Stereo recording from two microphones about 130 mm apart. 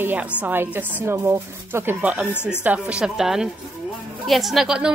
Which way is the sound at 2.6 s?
10° right (ahead or behind).